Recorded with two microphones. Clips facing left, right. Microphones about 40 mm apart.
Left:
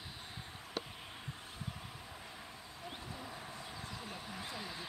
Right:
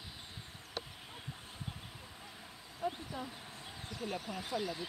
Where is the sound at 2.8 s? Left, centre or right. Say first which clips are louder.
Right 11 dB; right.